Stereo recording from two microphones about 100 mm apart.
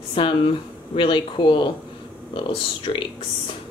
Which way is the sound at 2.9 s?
60° left (ahead or behind).